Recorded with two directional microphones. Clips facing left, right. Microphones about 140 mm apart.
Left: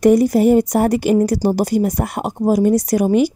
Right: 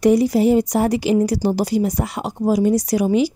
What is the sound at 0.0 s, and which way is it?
A woman's voice, 50° left (ahead or behind).